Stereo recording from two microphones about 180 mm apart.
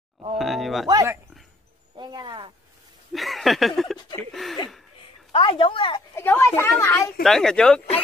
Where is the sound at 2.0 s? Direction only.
25° right (ahead or behind).